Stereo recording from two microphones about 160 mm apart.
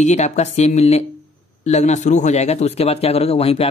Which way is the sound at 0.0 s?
45° left (ahead or behind).